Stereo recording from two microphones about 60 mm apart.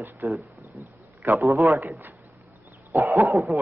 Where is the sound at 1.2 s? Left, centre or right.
Right.